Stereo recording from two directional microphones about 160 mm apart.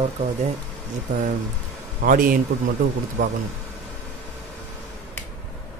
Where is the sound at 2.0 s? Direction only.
60° right (ahead or behind).